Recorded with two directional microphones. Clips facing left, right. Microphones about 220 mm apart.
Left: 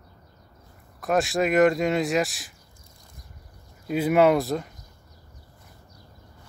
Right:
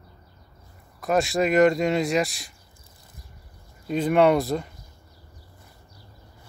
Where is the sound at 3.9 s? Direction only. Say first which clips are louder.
Even; 5° left (ahead or behind).